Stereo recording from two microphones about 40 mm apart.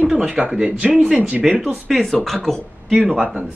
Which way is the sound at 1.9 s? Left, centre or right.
Centre.